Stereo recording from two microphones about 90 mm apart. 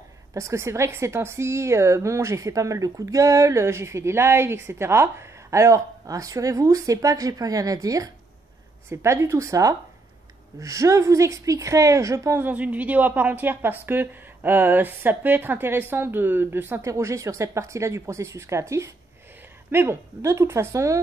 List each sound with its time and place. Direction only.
0.3 s a woman's voice: 35° right (ahead or behind)
8.8 s a woman's voice: 30° right (ahead or behind)
12.4 s a woman's voice: 15° right (ahead or behind); by 21.0 s 35° right (ahead or behind)